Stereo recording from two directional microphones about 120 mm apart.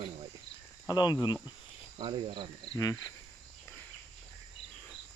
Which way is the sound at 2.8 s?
30° left (ahead or behind).